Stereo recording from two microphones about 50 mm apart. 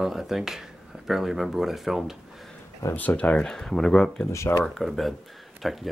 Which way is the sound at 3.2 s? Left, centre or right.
Centre.